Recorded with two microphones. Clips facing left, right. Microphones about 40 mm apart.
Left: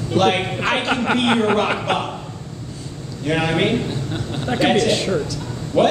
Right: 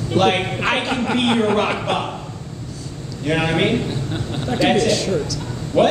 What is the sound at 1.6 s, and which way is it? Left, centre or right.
Speech, centre.